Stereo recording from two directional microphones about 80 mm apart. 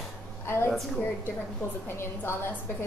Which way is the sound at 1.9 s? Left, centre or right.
Left.